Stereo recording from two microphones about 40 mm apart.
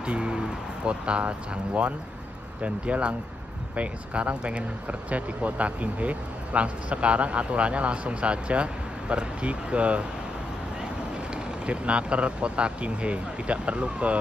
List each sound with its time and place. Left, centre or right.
0.0 s speech: right
2.6 s speech: right
11.6 s speech: right